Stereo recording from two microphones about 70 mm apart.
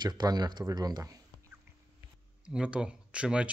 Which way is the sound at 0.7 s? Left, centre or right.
Right.